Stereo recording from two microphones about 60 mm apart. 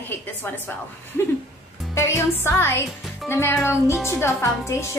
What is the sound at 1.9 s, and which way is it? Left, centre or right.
Music, left.